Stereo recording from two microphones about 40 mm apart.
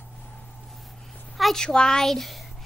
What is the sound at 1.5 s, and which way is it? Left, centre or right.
Speech, centre.